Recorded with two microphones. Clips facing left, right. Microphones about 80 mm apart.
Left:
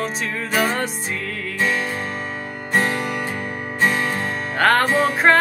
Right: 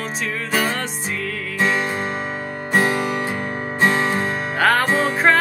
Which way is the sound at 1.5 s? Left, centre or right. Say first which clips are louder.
Right 2 dB; centre.